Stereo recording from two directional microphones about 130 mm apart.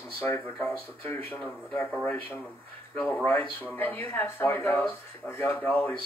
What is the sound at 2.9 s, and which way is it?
Speech, 10° left (ahead or behind).